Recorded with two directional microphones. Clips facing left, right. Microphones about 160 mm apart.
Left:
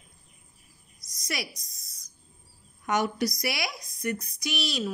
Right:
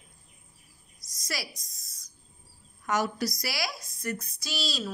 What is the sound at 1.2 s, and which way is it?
Speech, 20° left (ahead or behind).